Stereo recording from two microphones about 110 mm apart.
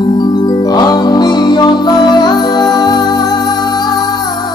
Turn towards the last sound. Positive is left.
turn(degrees=40)  # may be behind; listen again after turning